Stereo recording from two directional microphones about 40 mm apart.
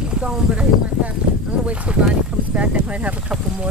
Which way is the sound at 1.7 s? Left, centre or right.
Right.